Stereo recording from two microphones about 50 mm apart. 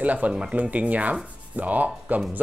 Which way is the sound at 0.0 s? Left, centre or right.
Right.